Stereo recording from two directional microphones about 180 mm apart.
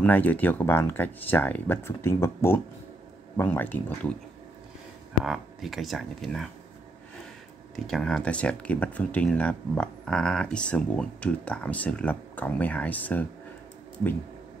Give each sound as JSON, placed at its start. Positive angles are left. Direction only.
{"t": 0.0, "sound": "speech", "side_deg": 10}
{"t": 5.2, "sound": "speech", "side_deg": 0}
{"t": 7.7, "sound": "speech", "side_deg": 5}